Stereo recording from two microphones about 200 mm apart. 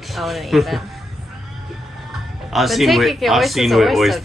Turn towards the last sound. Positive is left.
turn(degrees=0)  # may be behind; listen again after turning